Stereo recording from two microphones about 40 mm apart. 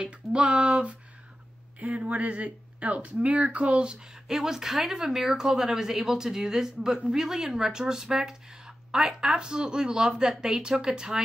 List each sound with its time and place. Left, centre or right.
0.0 s speech: right
4.1 s speech: centre